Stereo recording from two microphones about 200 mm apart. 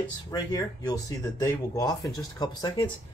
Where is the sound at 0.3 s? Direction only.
20° left (ahead or behind).